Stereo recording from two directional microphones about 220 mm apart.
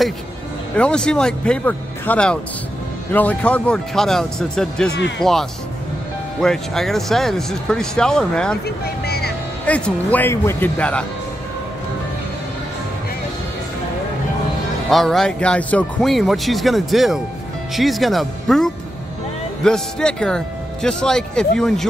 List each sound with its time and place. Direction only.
0.7 s speech: 5° left (ahead or behind)
8.6 s vehicle: 45° left (ahead or behind)
9.7 s speech: 5° left (ahead or behind)
14.9 s speech: centre (ahead or behind)